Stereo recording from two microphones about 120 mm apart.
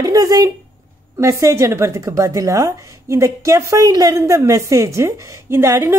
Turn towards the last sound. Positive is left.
turn(degrees=-25)  # may be behind; listen again after turning